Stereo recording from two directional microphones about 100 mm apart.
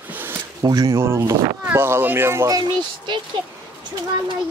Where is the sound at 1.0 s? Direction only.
25° right (ahead or behind).